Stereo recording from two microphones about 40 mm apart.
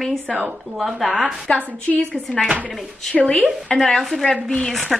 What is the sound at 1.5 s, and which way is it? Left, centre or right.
Speech, left.